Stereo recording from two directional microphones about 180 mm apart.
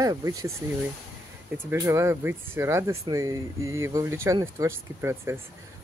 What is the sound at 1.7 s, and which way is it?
Speech, 15° right (ahead or behind).